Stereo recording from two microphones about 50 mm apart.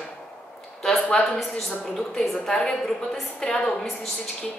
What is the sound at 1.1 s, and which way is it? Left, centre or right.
A woman's voice, centre.